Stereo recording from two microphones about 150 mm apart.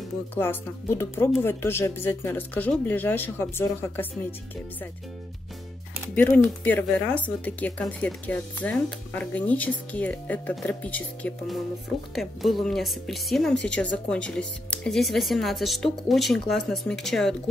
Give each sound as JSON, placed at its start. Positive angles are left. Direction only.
{"t": 0.3, "sound": "speech", "side_deg": 15}
{"t": 6.1, "sound": "speech", "side_deg": 10}
{"t": 12.2, "sound": "speech", "side_deg": 0}